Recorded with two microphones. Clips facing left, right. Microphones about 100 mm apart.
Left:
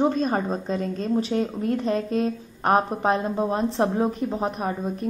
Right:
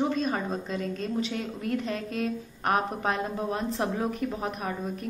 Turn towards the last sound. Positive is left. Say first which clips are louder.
# left 5 dB
turn(degrees=30)  # may be behind; listen again after turning